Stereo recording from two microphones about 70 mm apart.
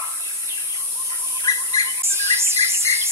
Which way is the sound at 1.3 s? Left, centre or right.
Left.